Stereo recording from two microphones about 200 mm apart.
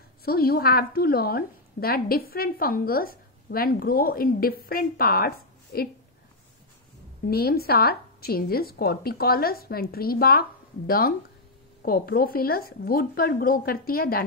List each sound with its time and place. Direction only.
0.2 s a woman's voice: 50° left (ahead or behind)
7.2 s a woman's voice: 50° left (ahead or behind)